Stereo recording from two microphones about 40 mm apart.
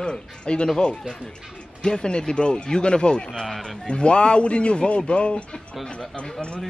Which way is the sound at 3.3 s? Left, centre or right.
Centre.